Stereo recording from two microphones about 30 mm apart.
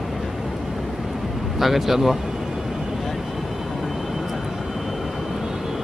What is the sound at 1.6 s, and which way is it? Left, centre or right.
Speech, centre.